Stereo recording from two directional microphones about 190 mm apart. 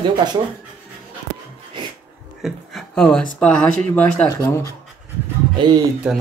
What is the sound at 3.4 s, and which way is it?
Speech, 5° left (ahead or behind).